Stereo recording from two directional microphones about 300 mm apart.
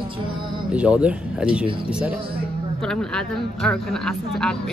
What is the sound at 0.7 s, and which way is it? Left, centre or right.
Speech, centre.